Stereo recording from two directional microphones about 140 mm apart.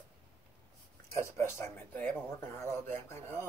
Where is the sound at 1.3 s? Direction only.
20° left (ahead or behind).